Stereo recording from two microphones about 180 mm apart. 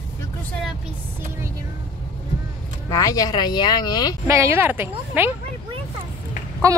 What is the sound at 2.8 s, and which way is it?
Speech, 20° left (ahead or behind).